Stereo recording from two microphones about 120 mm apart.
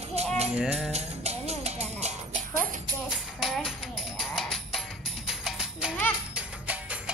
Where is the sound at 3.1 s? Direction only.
Centre (ahead or behind).